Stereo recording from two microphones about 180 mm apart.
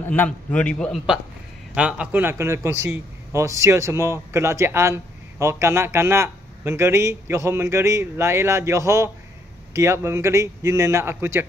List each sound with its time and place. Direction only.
0.0 s a man's voice: 10° left (ahead or behind); by 11.4 s 15° right (ahead or behind)